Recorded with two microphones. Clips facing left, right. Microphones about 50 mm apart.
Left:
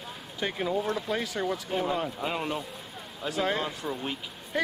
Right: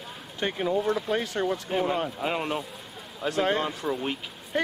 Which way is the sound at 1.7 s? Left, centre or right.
Right.